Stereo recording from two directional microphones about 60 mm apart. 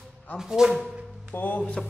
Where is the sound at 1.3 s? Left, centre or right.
Left.